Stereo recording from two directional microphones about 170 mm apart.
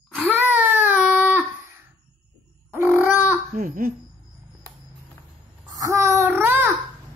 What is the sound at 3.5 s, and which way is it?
Speech, 55° right (ahead or behind).